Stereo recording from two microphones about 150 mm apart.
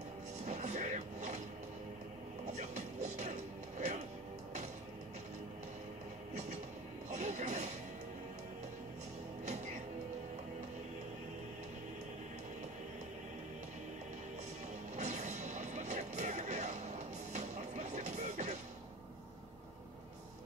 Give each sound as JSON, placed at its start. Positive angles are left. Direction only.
{"t": 0.5, "sound": "music", "side_deg": -50}
{"t": 2.5, "sound": "music", "side_deg": -50}
{"t": 7.1, "sound": "television", "side_deg": -50}
{"t": 15.0, "sound": "music", "side_deg": -50}